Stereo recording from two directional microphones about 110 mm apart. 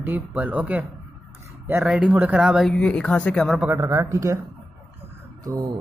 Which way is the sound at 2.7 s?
10° left (ahead or behind).